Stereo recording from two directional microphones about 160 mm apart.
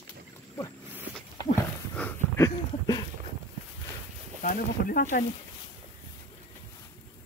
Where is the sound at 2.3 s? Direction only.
20° left (ahead or behind).